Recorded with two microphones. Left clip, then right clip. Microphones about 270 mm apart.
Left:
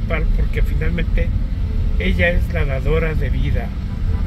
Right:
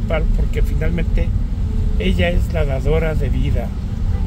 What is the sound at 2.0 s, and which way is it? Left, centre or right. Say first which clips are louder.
Speech: left 2 dB; centre.